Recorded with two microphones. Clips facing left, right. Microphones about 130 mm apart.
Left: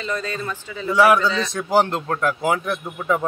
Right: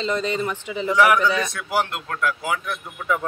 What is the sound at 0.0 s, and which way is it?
A man's voice, 20° right (ahead or behind).